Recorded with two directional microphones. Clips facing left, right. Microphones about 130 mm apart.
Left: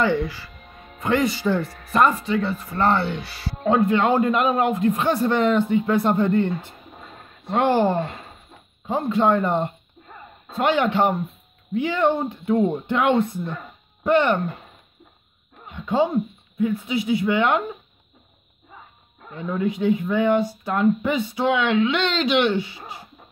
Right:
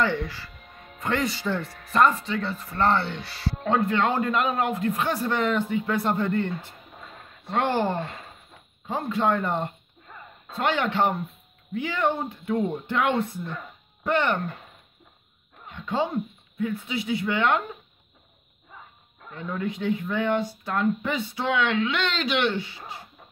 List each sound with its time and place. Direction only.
0.0 s speech: 10° left (ahead or behind)
15.6 s speech: 15° left (ahead or behind)
19.2 s speech: 15° left (ahead or behind)